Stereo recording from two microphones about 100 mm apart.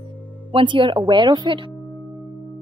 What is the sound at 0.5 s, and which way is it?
A woman's voice, 55° right (ahead or behind).